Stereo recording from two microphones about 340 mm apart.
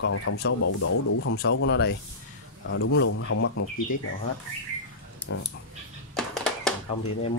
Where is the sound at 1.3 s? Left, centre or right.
Left.